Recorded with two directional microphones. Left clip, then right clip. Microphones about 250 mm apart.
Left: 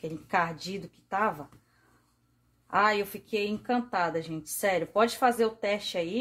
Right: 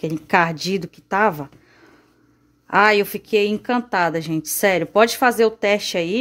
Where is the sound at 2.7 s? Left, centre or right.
Right.